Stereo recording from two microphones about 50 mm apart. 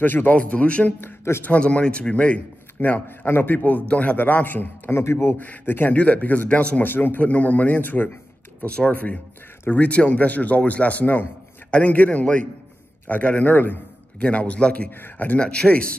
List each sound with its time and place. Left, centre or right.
0.0 s a man's voice: left
0.4 s speech: left
1.3 s speech: left
1.6 s speech: left
2.8 s a man's voice: left
4.9 s a man's voice: left
5.4 s a man's voice: left
6.9 s speech: left
7.2 s a man's voice: left
8.6 s a man's voice: left
14.2 s speech: left
14.9 s speech: left
15.2 s speech: left